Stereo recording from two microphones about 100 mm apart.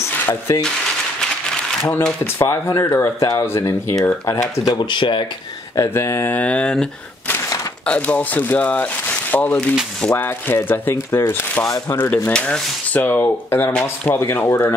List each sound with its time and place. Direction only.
0.0 s a sound: 25° left (ahead or behind)
2.2 s speech: 30° left (ahead or behind)
4.7 s speech: 50° left (ahead or behind)
5.8 s speech: 30° left (ahead or behind)
6.3 s speech: 10° left (ahead or behind)
12.3 s speech: 10° left (ahead or behind)